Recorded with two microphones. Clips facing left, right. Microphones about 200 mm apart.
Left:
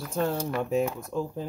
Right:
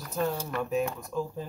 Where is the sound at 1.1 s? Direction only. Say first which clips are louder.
Left 2 dB; 20° left (ahead or behind).